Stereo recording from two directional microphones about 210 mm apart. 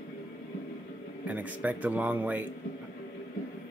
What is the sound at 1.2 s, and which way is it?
Speech, 5° right (ahead or behind).